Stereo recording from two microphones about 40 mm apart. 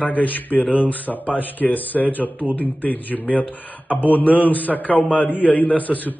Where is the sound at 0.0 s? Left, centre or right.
Left.